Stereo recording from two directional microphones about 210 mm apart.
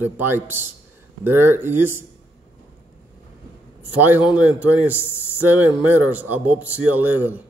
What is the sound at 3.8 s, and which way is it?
Speech, 10° right (ahead or behind).